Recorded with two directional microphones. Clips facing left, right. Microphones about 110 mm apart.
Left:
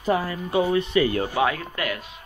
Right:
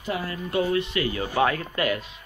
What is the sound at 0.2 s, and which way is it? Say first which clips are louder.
Speech: left 3 dB; 20° left (ahead or behind).